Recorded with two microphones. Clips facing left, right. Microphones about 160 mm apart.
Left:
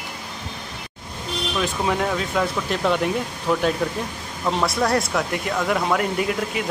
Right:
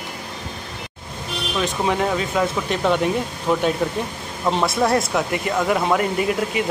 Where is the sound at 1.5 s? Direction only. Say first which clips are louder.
Right 2 dB; centre (ahead or behind).